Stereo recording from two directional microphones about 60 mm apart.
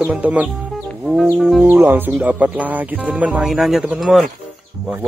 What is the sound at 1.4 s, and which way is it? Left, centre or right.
Speech, centre.